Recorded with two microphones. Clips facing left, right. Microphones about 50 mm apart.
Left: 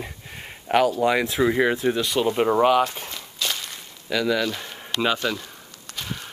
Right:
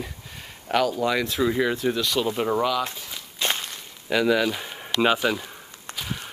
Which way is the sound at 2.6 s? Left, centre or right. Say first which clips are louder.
Left 6 dB; left.